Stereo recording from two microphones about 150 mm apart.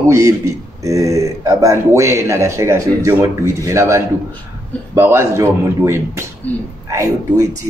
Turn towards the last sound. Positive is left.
turn(degrees=-20)  # may be behind; listen again after turning